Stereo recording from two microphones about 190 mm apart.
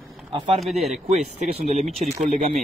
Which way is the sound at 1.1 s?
35° right (ahead or behind).